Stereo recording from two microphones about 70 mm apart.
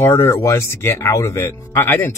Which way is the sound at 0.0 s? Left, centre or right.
Left.